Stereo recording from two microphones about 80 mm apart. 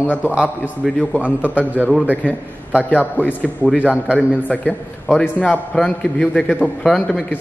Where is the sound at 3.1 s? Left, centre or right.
Centre.